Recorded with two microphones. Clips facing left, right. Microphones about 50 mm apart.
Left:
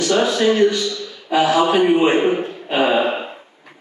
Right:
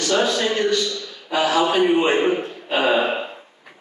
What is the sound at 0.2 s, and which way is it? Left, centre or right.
Speech, centre.